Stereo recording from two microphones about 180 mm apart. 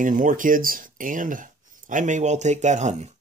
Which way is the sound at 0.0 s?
45° right (ahead or behind).